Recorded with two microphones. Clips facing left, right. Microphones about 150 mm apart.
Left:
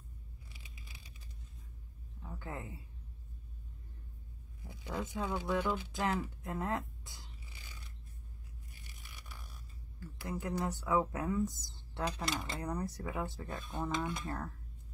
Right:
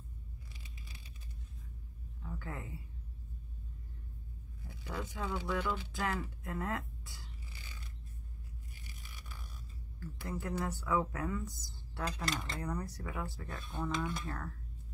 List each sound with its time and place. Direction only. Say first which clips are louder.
0.5 s scissors: right 2 dB; 10° left (ahead or behind)
2.2 s speech: even; 20° left (ahead or behind)
4.6 s speech: left 2 dB; 20° left (ahead or behind)
9.9 s speech: even; 15° left (ahead or behind)